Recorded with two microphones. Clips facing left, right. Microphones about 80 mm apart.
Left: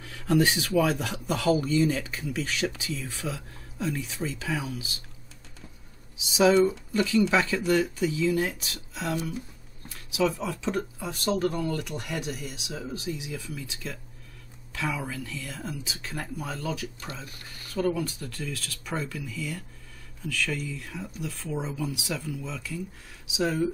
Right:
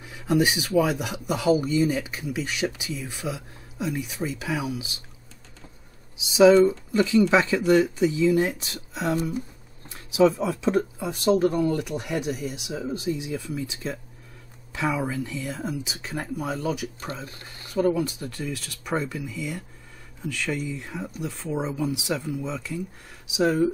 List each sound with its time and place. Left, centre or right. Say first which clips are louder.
0.0 s speech: right 1 dB; centre
6.3 s speech: right 5 dB; right
17.1 s speech: right 5 dB; right
23.3 s speech: right 5 dB; centre